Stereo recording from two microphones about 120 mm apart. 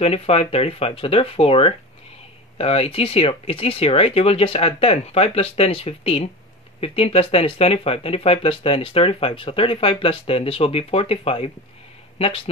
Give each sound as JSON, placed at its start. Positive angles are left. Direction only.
{"t": 0.0, "sound": "speech", "side_deg": 55}